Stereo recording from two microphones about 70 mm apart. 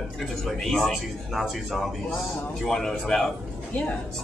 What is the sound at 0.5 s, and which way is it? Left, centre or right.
A man's voice, centre.